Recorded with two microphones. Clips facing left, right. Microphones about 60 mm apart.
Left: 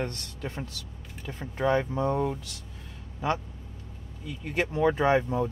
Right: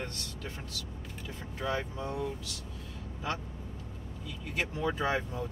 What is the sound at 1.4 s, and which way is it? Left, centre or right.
Speech, left.